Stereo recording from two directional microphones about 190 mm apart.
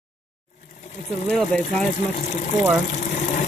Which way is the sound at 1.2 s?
5° left (ahead or behind).